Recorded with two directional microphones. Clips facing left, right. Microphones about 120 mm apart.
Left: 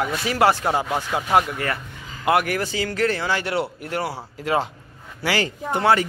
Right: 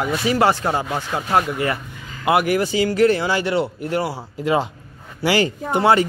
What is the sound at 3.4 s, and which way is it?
Speech, 5° left (ahead or behind).